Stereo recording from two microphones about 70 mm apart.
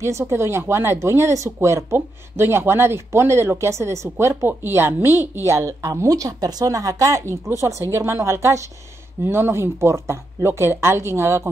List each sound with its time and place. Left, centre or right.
0.0 s speech: right
5.5 s speech: right